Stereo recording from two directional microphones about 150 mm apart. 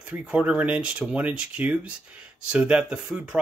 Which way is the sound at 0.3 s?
10° right (ahead or behind).